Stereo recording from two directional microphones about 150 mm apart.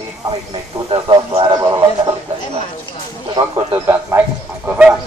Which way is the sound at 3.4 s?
15° right (ahead or behind).